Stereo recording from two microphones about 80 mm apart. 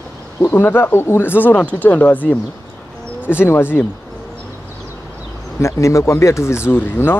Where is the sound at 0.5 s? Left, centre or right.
Left.